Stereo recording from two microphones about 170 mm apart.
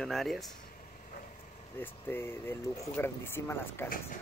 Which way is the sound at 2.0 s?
15° left (ahead or behind).